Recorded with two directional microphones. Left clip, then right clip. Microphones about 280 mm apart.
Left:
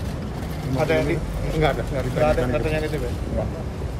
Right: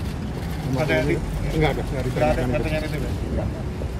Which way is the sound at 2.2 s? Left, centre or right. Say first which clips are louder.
Left 2 dB; left.